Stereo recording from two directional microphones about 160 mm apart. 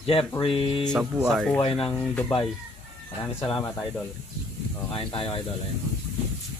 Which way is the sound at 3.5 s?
30° left (ahead or behind).